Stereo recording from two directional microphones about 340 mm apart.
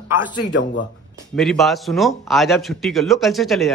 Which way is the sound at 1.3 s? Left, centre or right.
Centre.